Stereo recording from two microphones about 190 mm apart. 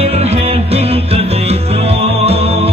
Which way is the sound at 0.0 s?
35° right (ahead or behind).